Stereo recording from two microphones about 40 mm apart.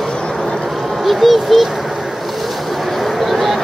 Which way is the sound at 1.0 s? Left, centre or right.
Centre.